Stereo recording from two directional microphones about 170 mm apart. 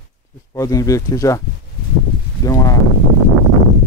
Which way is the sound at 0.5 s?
20° left (ahead or behind).